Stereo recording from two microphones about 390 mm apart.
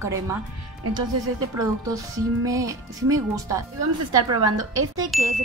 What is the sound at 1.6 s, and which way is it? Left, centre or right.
A woman's voice, centre.